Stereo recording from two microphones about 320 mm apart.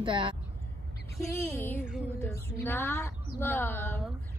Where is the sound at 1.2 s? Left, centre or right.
Centre.